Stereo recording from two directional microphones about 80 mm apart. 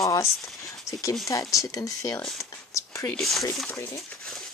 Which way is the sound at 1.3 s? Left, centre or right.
Left.